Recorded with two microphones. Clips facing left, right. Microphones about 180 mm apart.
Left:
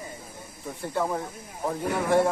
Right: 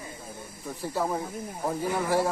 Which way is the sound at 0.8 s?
5° right (ahead or behind).